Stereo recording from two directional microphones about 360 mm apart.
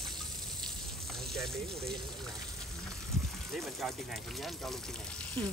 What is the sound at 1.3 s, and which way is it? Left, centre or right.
Speech, centre.